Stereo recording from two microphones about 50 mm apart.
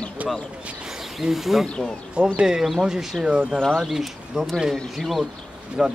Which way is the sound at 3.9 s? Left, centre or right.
Centre.